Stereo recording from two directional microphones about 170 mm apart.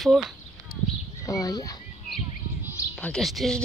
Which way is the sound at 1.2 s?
20° left (ahead or behind).